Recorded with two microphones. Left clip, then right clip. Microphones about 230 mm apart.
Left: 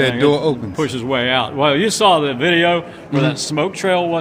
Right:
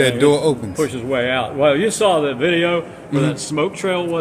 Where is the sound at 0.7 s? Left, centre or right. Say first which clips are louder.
Even; left.